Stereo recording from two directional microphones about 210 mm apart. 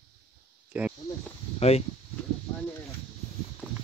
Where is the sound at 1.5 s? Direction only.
30° left (ahead or behind).